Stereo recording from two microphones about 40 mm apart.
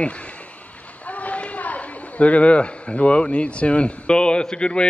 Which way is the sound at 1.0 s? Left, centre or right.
Left.